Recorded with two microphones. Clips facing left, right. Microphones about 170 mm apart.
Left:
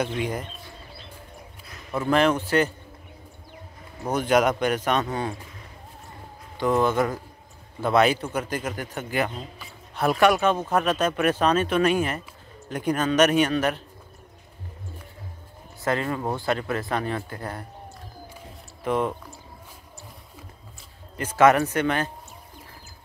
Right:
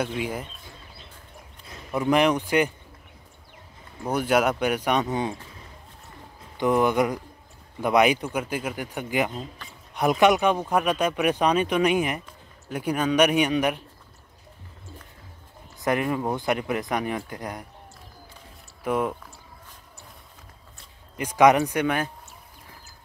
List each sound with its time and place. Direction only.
0.0 s speech: 5° right (ahead or behind)
1.9 s speech: 15° right (ahead or behind)
4.1 s speech: 10° right (ahead or behind)
6.6 s speech: 15° right (ahead or behind)
9.3 s speech: centre (ahead or behind)
9.9 s speech: 15° right (ahead or behind)
15.8 s speech: 15° right (ahead or behind)
18.9 s speech: 10° right (ahead or behind)
21.2 s speech: 15° right (ahead or behind)